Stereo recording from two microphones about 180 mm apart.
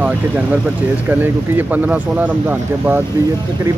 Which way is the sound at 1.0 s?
10° right (ahead or behind).